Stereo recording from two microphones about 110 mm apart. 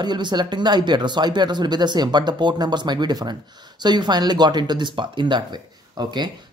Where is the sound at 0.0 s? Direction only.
40° right (ahead or behind).